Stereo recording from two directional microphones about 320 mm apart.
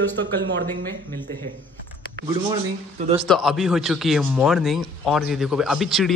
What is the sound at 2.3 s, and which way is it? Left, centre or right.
Speech, centre.